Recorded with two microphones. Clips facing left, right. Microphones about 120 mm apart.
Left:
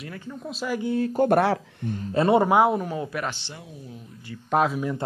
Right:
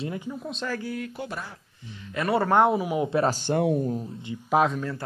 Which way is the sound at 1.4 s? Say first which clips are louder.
Left 18 dB; 75° left (ahead or behind).